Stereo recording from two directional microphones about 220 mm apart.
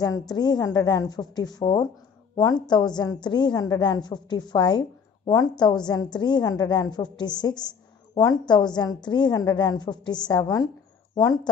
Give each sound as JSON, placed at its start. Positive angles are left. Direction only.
{"t": 0.0, "sound": "a woman's voice", "side_deg": 20}